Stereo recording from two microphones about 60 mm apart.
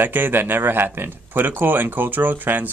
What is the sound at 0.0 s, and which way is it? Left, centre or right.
Speech, right.